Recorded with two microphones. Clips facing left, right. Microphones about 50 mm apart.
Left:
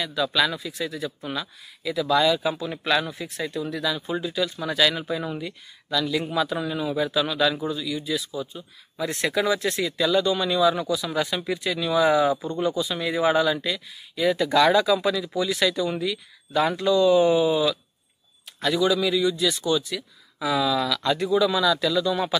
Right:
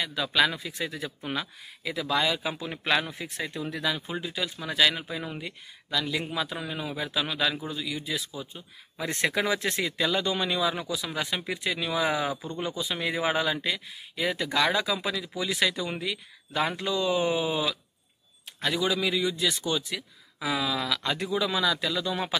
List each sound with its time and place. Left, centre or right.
0.0 s a man's voice: right; by 5.4 s centre
5.4 s a man's voice: right
14.3 s a man's voice: centre